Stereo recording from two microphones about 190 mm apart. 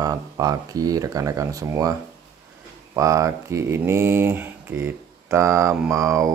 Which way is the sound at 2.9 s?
15° right (ahead or behind).